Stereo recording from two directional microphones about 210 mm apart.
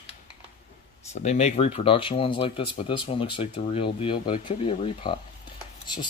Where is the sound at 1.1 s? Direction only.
30° left (ahead or behind).